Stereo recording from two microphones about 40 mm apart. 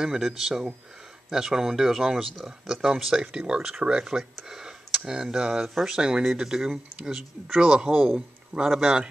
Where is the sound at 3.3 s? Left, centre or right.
Right.